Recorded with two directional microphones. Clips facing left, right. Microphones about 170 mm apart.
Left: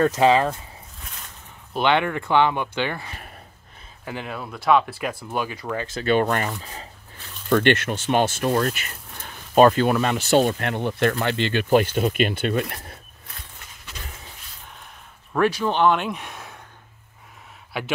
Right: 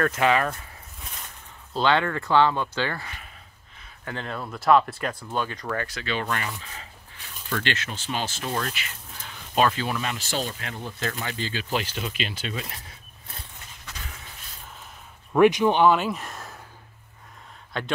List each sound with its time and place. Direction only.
0.1 s speech: 30° left (ahead or behind)
1.7 s speech: 20° left (ahead or behind)
6.0 s speech: 50° left (ahead or behind)
7.4 s speech: 55° left (ahead or behind)
11.7 s speech: 50° left (ahead or behind)
15.3 s speech: 15° right (ahead or behind); by 16.6 s centre (ahead or behind)
17.7 s speech: 10° left (ahead or behind)